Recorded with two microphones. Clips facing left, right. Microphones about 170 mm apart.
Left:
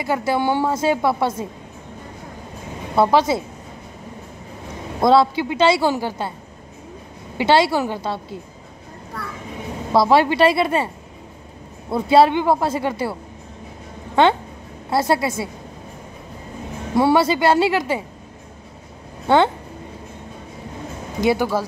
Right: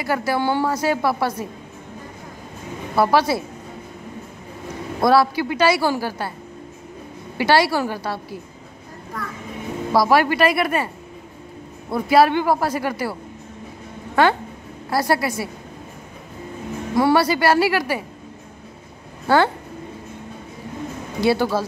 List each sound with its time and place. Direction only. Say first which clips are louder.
0.0 s a woman's voice: left 1 dB; 20° left (ahead or behind)
3.0 s a woman's voice: left 1 dB; 20° left (ahead or behind)
5.0 s a woman's voice: left 1 dB; 20° left (ahead or behind)
7.3 s a woman's voice: left 1 dB; 20° left (ahead or behind)
9.9 s a woman's voice: left 2 dB; 25° left (ahead or behind)
11.9 s a woman's voice: left 1 dB; 25° left (ahead or behind)
14.2 s a woman's voice: left 2 dB; 25° left (ahead or behind)
16.9 s a woman's voice: left 1 dB; 25° left (ahead or behind)
19.2 s speech: left 1 dB; 20° left (ahead or behind)
21.2 s speech: even; 15° left (ahead or behind)